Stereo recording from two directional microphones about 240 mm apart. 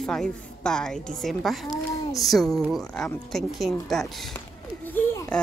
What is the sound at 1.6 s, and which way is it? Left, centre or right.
Speech, centre.